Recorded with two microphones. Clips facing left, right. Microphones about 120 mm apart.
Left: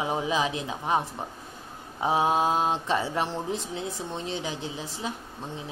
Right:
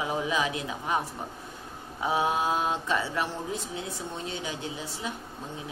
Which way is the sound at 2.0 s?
30° left (ahead or behind).